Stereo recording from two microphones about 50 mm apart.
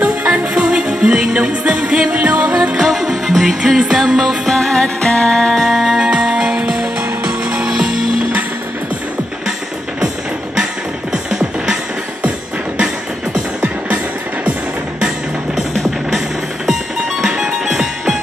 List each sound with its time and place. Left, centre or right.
0.0 s music: right
0.7 s music: centre
2.8 s music: centre
4.5 s music: centre
5.9 s music: centre
11.2 s music: centre
12.7 s music: centre
17.2 s music: centre